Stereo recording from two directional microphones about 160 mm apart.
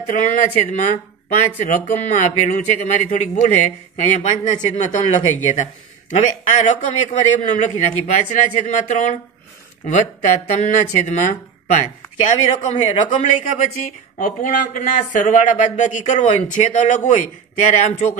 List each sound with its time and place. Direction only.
0.0 s speech: 55° left (ahead or behind)